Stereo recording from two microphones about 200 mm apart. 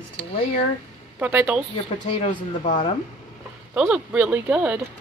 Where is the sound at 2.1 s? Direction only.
30° left (ahead or behind).